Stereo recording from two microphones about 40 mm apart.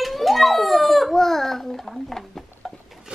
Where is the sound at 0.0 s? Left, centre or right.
Centre.